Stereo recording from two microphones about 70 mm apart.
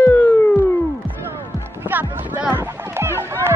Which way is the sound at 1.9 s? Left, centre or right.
Right.